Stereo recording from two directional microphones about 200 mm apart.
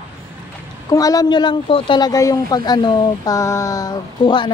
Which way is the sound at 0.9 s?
15° left (ahead or behind).